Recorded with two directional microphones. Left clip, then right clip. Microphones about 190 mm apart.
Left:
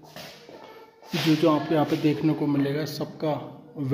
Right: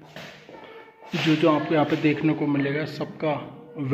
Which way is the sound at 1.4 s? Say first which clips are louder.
Right 3 dB; 15° left (ahead or behind).